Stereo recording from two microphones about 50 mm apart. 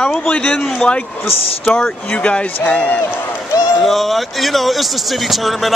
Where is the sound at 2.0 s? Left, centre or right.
Left.